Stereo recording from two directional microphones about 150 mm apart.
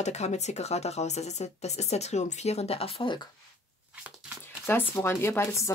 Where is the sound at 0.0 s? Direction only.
50° left (ahead or behind); by 3.3 s 35° left (ahead or behind).